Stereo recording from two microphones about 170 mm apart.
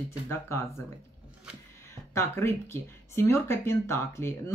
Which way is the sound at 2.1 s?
15° left (ahead or behind).